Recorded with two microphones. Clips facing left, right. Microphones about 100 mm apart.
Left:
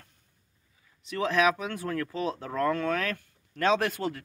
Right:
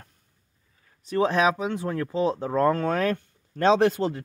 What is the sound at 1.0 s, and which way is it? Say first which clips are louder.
Speech: right 3 dB; 35° right (ahead or behind).